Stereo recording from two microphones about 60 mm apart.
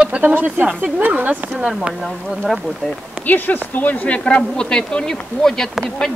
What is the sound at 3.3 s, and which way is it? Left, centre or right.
Speech, left.